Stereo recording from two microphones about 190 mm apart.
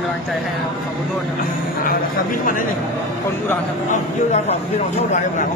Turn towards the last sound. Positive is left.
turn(degrees=35)  # may be behind; listen again after turning